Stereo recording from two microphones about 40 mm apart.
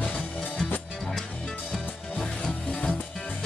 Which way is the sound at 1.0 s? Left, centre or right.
Centre.